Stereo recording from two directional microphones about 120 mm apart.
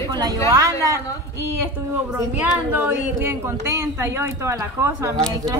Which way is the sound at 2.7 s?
15° right (ahead or behind).